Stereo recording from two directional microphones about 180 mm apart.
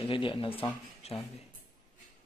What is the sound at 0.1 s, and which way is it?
Speech, 30° left (ahead or behind).